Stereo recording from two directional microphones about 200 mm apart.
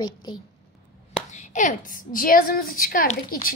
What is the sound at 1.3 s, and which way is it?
A woman's voice, 40° left (ahead or behind).